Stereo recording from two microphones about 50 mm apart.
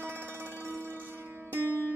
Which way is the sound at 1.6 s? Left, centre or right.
Right.